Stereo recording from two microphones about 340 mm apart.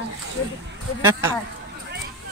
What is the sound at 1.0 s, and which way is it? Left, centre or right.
Speech, centre.